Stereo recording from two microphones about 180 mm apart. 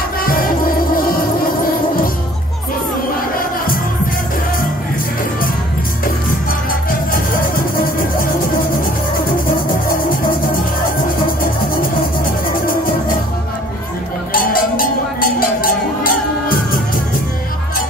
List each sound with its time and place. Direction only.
0.2 s music: 55° left (ahead or behind)
3.3 s music: 55° left (ahead or behind)
6.9 s music: 50° left (ahead or behind)
14.3 s a sound: 50° left (ahead or behind)